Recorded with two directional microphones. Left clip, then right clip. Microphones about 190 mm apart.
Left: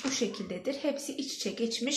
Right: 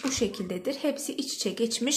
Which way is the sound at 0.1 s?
40° right (ahead or behind).